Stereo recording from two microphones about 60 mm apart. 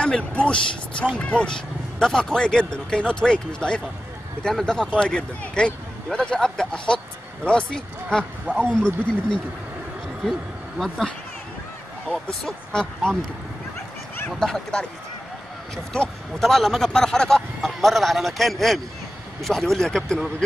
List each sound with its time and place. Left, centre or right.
0.0 s speech: centre
2.0 s speech: centre
12.3 s a man's voice: centre
14.4 s a man's voice: centre